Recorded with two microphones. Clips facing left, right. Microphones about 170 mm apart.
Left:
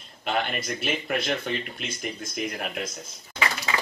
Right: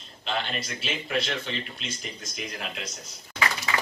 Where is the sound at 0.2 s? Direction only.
55° left (ahead or behind).